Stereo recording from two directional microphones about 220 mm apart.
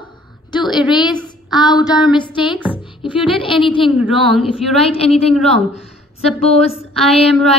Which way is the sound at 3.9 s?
5° right (ahead or behind).